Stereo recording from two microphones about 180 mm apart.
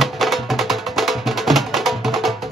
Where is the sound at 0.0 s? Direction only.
Centre (ahead or behind).